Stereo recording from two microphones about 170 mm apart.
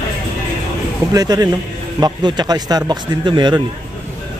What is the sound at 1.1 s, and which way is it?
Speech, 20° right (ahead or behind).